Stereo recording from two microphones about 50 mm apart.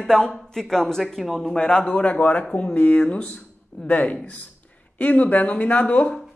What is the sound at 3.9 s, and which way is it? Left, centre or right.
Speech, left.